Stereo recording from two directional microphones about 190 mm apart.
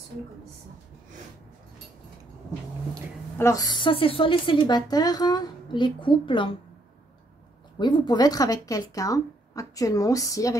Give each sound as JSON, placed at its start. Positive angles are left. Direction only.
{"t": 3.3, "sound": "a woman's voice", "side_deg": 15}
{"t": 7.8, "sound": "speech", "side_deg": 20}